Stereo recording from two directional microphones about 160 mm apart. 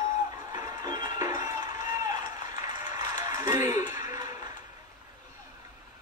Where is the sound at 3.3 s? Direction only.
20° right (ahead or behind).